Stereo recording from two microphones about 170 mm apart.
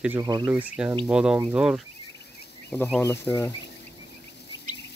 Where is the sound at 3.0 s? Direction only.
15° left (ahead or behind).